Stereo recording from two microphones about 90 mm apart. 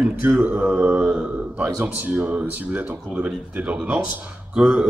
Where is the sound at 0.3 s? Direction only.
15° right (ahead or behind).